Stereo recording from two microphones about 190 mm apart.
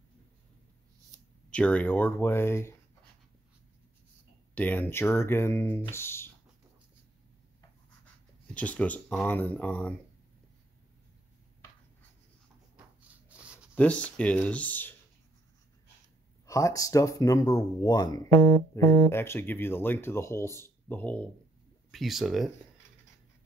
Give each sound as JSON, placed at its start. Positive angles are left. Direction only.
{"t": 1.5, "sound": "speech", "side_deg": 5}
{"t": 4.6, "sound": "speech", "side_deg": 10}
{"t": 8.5, "sound": "speech", "side_deg": 5}
{"t": 12.7, "sound": "a sound", "side_deg": -10}
{"t": 13.7, "sound": "speech", "side_deg": 5}
{"t": 16.4, "sound": "speech", "side_deg": 15}